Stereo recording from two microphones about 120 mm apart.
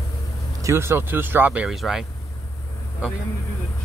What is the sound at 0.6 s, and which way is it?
Speech, 20° right (ahead or behind).